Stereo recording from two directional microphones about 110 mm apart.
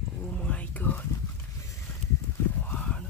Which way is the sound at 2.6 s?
10° left (ahead or behind).